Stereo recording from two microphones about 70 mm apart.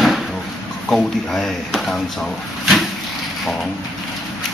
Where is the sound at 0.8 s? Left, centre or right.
Centre.